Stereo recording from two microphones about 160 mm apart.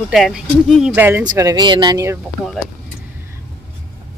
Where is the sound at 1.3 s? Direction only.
25° right (ahead or behind).